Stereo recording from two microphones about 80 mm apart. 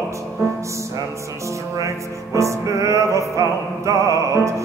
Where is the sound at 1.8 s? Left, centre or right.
Right.